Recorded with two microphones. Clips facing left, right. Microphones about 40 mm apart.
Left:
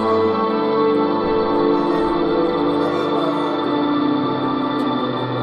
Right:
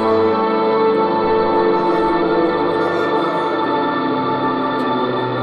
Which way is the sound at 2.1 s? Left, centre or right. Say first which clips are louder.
Right 2 dB; right.